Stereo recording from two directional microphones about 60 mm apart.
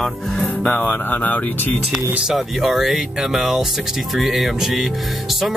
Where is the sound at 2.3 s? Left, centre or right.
Centre.